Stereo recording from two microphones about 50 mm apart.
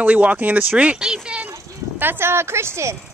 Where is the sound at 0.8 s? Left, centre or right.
Centre.